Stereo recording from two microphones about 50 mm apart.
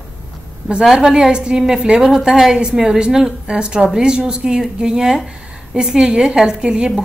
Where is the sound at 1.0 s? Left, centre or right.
Centre.